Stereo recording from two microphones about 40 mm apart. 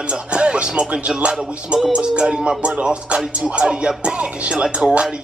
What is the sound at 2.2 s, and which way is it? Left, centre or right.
Speech, centre.